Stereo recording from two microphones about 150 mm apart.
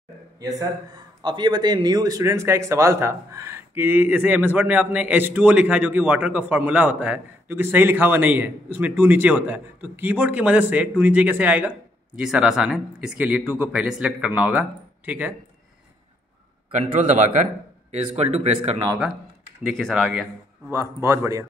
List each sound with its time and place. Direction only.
0.4 s a man's voice: 25° right (ahead or behind)
16.7 s a man's voice: 55° right (ahead or behind)
19.6 s speech: centre (ahead or behind)
20.7 s a man's voice: 20° right (ahead or behind)